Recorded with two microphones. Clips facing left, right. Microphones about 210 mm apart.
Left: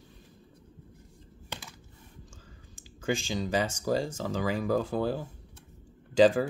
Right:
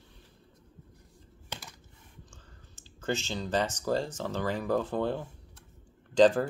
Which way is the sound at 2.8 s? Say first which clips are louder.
Left 2 dB; 10° left (ahead or behind).